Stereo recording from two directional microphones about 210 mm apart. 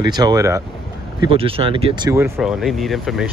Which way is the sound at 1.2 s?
25° right (ahead or behind).